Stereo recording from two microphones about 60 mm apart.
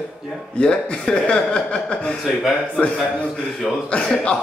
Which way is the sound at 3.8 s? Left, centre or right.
Centre.